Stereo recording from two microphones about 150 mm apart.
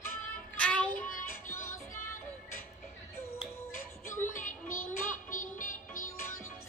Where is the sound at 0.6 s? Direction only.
10° left (ahead or behind).